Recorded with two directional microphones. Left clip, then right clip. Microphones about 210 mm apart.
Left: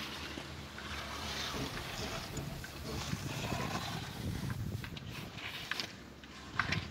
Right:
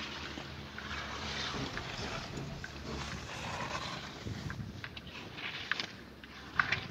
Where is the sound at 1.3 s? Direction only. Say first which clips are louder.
Even; 65° left (ahead or behind).